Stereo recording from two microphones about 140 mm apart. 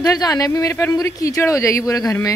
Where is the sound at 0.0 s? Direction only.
25° left (ahead or behind).